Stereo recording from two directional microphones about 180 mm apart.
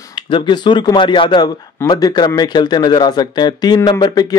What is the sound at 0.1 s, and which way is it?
Speech, 25° left (ahead or behind).